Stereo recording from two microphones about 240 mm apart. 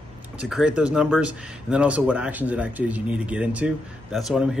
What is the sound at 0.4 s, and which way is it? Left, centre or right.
A man's voice, centre.